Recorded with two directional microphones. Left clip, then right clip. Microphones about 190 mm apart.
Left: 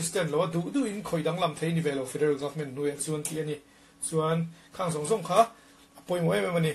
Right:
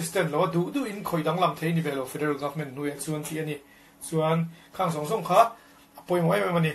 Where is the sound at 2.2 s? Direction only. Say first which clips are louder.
Left 3 dB; 25° left (ahead or behind).